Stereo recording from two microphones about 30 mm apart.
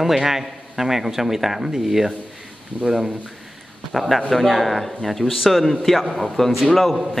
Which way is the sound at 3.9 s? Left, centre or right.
Centre.